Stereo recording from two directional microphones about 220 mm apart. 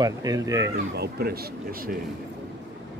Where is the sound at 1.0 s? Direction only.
45° right (ahead or behind).